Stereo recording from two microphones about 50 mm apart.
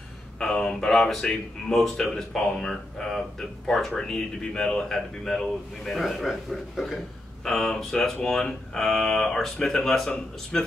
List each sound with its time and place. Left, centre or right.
0.4 s a sound: centre
1.2 s speech: centre
1.8 s a man's voice: centre
7.4 s speech: centre